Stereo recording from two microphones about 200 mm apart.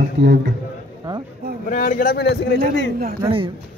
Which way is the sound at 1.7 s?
45° left (ahead or behind).